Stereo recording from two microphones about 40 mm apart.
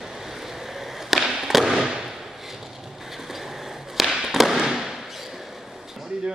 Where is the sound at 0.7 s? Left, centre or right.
Centre.